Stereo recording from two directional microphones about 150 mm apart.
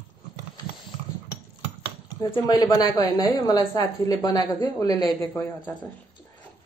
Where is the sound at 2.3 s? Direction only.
25° left (ahead or behind).